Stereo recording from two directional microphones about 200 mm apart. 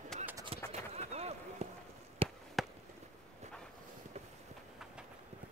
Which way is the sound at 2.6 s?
Centre (ahead or behind).